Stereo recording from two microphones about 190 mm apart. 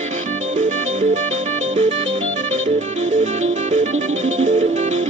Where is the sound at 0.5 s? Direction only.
40° right (ahead or behind).